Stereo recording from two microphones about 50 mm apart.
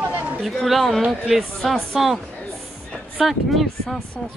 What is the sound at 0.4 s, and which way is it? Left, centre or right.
Speech, centre.